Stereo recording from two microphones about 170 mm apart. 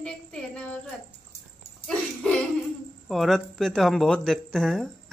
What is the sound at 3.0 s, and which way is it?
Speech, centre (ahead or behind).